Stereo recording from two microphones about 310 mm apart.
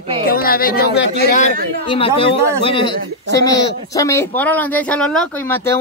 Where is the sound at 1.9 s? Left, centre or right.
Centre.